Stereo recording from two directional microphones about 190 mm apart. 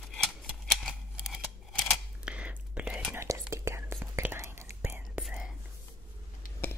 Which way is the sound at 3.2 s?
15° right (ahead or behind).